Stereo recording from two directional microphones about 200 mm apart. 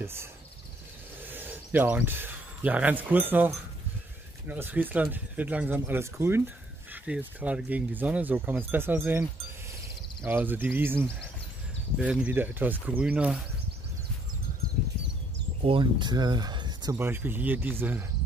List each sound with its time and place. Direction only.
0.0 s speech: 10° right (ahead or behind)
10.2 s speech: 10° right (ahead or behind)
15.6 s speech: 25° right (ahead or behind)
16.9 s speech: 10° right (ahead or behind)